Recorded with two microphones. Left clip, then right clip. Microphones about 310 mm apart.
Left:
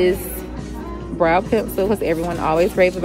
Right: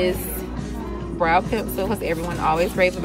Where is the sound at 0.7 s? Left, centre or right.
Centre.